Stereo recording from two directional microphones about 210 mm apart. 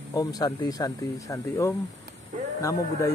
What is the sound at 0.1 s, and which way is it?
Speech, 15° left (ahead or behind).